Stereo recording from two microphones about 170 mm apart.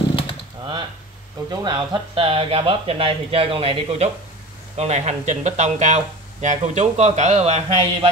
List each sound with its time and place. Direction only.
1.5 s speech: 25° right (ahead or behind); by 8.1 s 40° right (ahead or behind)